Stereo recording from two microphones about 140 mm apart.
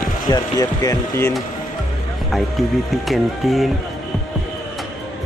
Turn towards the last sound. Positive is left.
turn(degrees=0)  # may be behind; listen again after turning